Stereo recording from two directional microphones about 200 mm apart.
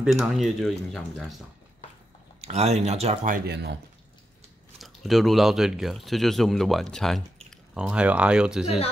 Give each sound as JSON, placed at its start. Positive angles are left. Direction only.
{"t": 0.0, "sound": "speech", "side_deg": 0}
{"t": 2.4, "sound": "speech", "side_deg": -30}
{"t": 3.3, "sound": "speech", "side_deg": -55}
{"t": 4.7, "sound": "speech", "side_deg": 0}
{"t": 8.6, "sound": "speech", "side_deg": 30}